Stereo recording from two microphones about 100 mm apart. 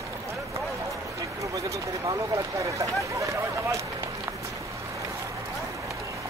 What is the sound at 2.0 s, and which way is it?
Vehicle, 30° right (ahead or behind).